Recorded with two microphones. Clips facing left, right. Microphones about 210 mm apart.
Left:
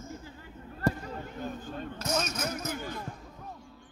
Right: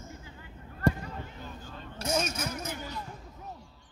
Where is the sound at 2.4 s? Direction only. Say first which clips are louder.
Left 2 dB; 50° left (ahead or behind).